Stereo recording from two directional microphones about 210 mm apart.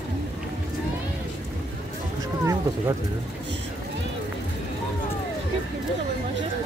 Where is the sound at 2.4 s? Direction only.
15° right (ahead or behind).